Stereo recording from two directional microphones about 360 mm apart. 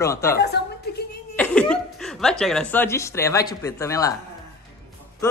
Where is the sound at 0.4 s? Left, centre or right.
Left.